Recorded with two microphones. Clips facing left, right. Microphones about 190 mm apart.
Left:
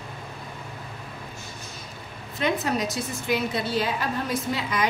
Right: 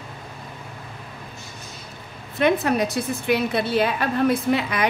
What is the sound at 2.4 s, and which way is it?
A woman's voice, 60° right (ahead or behind).